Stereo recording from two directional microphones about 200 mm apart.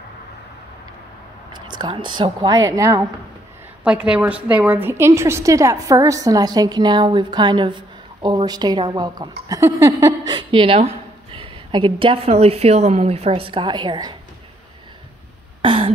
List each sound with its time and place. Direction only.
1.5 s a woman's voice: 20° right (ahead or behind)
3.8 s a woman's voice: 5° right (ahead or behind); by 14.1 s 20° right (ahead or behind)
15.6 s throat clearing: 25° right (ahead or behind)